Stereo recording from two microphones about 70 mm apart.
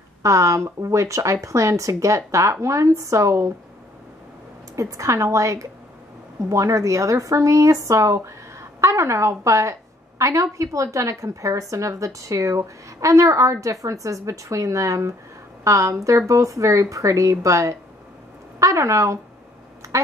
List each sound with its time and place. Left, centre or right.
0.2 s a woman's voice: right
4.7 s a woman's voice: right